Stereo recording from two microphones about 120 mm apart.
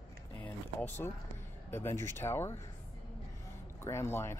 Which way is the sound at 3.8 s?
20° left (ahead or behind).